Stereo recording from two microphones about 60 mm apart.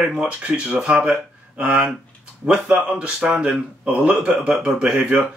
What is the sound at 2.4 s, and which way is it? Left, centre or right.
Speech, right.